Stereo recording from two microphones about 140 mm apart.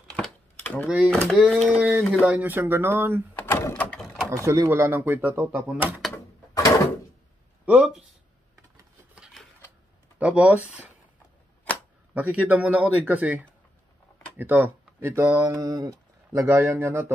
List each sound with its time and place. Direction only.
0.8 s speech: 10° right (ahead or behind)
1.1 s speech: 5° left (ahead or behind)
1.7 s a sound: 10° right (ahead or behind)
2.2 s speech: 10° right (ahead or behind)
3.4 s door: 15° left (ahead or behind)
4.0 s a sound: centre (ahead or behind)
4.5 s speech: 20° right (ahead or behind)
6.1 s a sound: 25° left (ahead or behind)
7.6 s speech: 5° right (ahead or behind)
9.1 s a sound: 5° right (ahead or behind)
10.1 s speech: 10° right (ahead or behind)
12.1 s speech: 10° right (ahead or behind)